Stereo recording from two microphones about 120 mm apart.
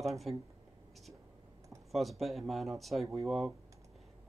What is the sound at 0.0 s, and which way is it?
Speech, centre (ahead or behind).